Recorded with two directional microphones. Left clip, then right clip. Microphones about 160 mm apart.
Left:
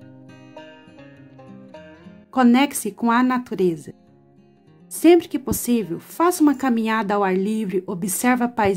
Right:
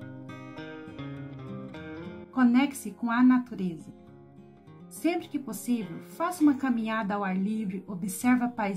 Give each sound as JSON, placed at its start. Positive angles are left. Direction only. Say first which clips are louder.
{"t": 2.3, "sound": "speech", "louder": "left 8 dB", "side_deg": 60}
{"t": 5.0, "sound": "speech", "louder": "left 15 dB", "side_deg": 60}